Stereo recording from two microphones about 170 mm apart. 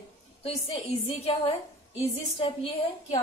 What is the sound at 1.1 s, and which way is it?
Speech, 35° left (ahead or behind).